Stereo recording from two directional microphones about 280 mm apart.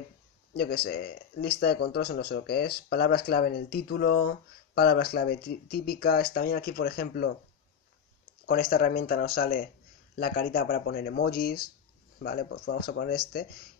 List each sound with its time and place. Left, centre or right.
0.6 s speech: left
8.5 s speech: left